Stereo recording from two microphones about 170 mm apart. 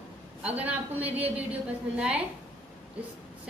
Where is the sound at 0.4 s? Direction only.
10° right (ahead or behind).